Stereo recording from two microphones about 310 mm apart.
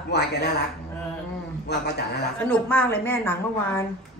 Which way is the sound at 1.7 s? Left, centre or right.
Left.